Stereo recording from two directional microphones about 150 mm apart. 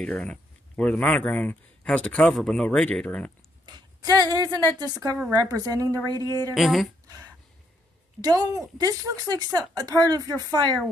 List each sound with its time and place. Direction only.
0.0 s speech: 10° left (ahead or behind)
3.6 s a sound: 30° right (ahead or behind)
4.3 s speech: 30° right (ahead or behind)
6.5 s speech: centre (ahead or behind)
8.2 s speech: 25° right (ahead or behind)